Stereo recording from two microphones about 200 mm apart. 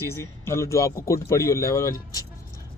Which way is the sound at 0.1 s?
15° left (ahead or behind).